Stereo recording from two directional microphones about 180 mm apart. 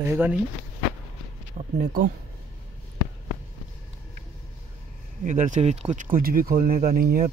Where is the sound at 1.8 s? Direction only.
50° right (ahead or behind).